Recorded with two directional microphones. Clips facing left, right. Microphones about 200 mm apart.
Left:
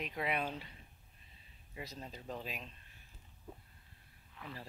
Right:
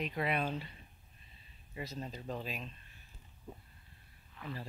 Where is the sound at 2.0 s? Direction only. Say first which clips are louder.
Right 4 dB; 5° right (ahead or behind).